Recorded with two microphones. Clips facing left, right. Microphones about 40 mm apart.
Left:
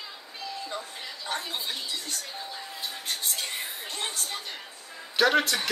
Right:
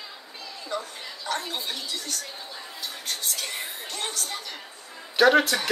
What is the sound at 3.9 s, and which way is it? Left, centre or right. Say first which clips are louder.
Music: right 2 dB; left.